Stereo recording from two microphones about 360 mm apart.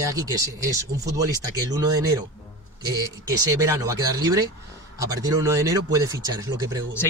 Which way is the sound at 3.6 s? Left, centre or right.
Centre.